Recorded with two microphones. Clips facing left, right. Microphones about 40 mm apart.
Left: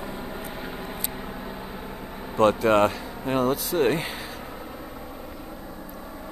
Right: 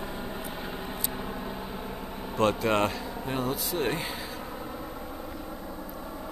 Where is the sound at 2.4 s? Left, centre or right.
Left.